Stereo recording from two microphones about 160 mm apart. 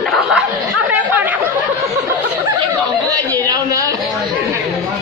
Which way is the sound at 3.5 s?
20° right (ahead or behind).